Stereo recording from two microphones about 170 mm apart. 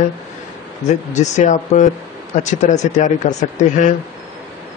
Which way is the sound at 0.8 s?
45° left (ahead or behind).